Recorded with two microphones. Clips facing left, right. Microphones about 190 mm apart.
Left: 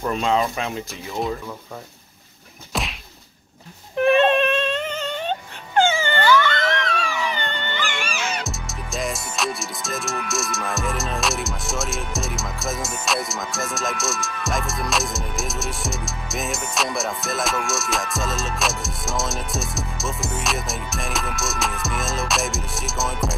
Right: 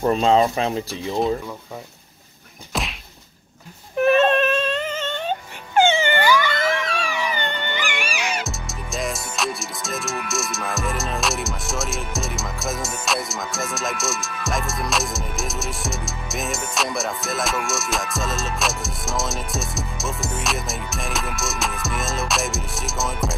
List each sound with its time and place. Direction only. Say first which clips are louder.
0.0 s speech: right 5 dB; 35° right (ahead or behind)
4.0 s a sound: even; centre (ahead or behind)
5.9 s dog: right 3 dB; 20° right (ahead or behind)
6.1 s a sound: left 1 dB; 10° right (ahead or behind)
7.5 s music: right 1 dB; 15° right (ahead or behind)
8.5 s music: even; centre (ahead or behind)